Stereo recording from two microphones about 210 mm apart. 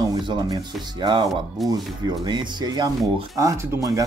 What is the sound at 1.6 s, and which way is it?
Speech, centre (ahead or behind).